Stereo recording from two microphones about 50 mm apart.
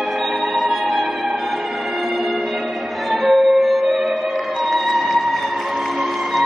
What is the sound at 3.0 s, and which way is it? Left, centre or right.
Music, centre.